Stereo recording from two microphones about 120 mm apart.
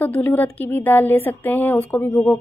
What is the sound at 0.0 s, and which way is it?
A woman's voice, 15° left (ahead or behind).